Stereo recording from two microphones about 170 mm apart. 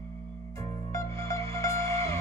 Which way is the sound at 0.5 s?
20° left (ahead or behind).